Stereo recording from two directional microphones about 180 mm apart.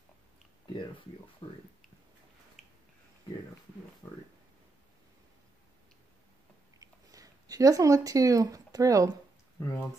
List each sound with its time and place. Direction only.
1.4 s speech: 30° left (ahead or behind)
2.6 s a sound: centre (ahead or behind)
4.0 s speech: 20° left (ahead or behind)
6.8 s speech: 20° right (ahead or behind)
9.6 s speech: 15° left (ahead or behind)